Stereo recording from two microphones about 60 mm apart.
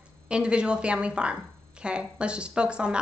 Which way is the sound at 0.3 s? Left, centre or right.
Centre.